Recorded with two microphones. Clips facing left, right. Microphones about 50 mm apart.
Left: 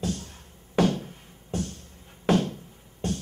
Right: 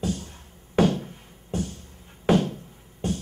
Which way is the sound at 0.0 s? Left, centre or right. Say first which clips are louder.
Right 2 dB; centre.